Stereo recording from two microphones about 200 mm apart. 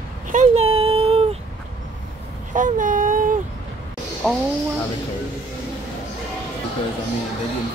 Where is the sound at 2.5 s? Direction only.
40° right (ahead or behind).